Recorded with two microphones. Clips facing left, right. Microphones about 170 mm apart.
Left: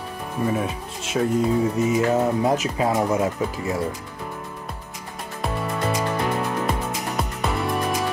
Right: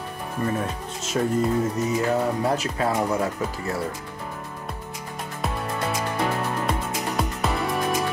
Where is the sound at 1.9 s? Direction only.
20° left (ahead or behind).